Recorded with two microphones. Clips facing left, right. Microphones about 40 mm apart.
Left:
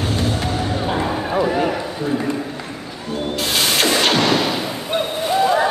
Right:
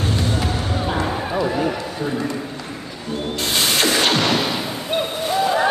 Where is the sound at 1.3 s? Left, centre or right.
Centre.